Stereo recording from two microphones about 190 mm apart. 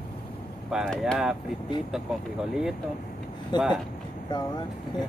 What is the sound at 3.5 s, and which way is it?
Speech, 25° left (ahead or behind).